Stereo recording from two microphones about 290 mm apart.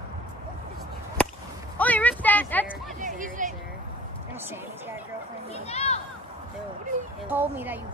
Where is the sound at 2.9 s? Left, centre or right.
Right.